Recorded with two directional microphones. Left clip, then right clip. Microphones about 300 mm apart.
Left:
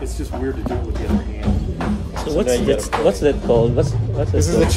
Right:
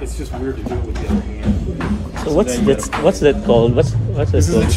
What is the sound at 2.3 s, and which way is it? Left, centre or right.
Speech, centre.